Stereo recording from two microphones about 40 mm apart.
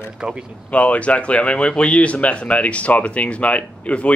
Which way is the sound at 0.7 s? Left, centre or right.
Left.